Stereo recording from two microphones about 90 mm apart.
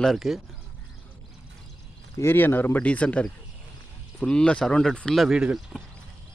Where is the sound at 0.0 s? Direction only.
Centre (ahead or behind).